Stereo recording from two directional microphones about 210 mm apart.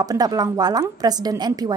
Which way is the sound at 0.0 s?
20° right (ahead or behind).